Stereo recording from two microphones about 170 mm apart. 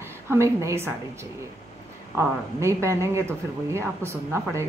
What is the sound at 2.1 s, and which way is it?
Speech, 15° right (ahead or behind).